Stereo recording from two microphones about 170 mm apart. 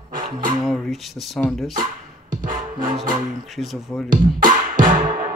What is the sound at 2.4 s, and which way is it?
Music, 50° right (ahead or behind).